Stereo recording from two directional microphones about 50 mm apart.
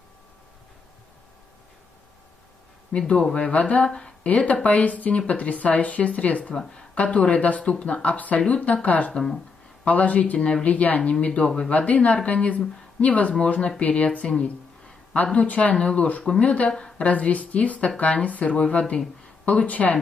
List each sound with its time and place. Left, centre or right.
3.0 s speech: centre
3.5 s speech: left
4.3 s speech: left
6.5 s speech: centre
7.0 s speech: left
9.1 s speech: centre
9.8 s speech: left
15.3 s speech: left
16.7 s a woman's voice: centre
17.1 s speech: left